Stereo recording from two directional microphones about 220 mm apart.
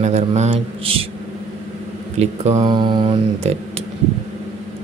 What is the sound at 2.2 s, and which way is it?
Mantra, 30° right (ahead or behind).